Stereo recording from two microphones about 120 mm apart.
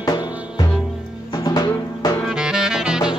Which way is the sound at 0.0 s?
35° left (ahead or behind).